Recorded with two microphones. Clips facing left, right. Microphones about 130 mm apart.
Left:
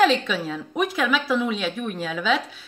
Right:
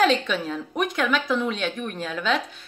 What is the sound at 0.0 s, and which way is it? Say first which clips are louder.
A woman's voice: left 1 dB; centre (ahead or behind).